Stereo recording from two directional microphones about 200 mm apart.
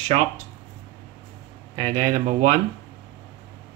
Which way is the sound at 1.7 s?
35° right (ahead or behind).